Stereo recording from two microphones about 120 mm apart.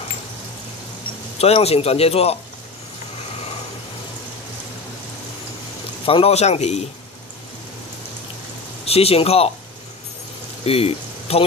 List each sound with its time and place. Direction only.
1.4 s speech: 55° left (ahead or behind)
6.0 s speech: 55° left (ahead or behind)
8.8 s speech: 55° left (ahead or behind)
10.6 s speech: 55° left (ahead or behind)